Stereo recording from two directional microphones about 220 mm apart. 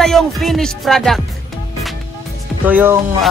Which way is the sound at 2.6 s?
10° right (ahead or behind).